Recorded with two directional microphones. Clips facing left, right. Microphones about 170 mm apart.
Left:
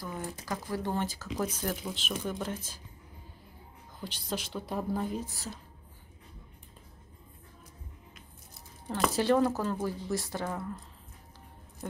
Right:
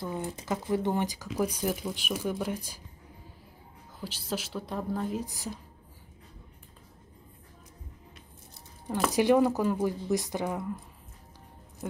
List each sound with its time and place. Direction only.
0.0 s speech: 25° right (ahead or behind)
4.0 s a woman's voice: 5° right (ahead or behind)
5.1 s speech: 15° right (ahead or behind)
8.8 s speech: centre (ahead or behind)
9.1 s speech: 15° right (ahead or behind)
11.8 s speech: 5° right (ahead or behind)